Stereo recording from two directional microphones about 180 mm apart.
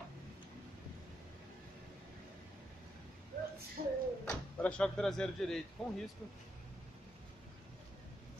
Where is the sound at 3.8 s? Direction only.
55° right (ahead or behind).